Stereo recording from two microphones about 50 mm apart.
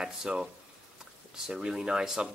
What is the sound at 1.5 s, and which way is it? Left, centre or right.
Speech, centre.